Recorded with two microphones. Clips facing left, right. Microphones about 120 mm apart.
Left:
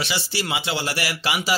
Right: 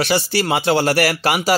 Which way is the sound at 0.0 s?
50° right (ahead or behind).